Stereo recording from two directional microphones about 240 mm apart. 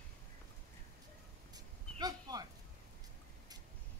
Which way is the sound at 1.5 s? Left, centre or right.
Centre.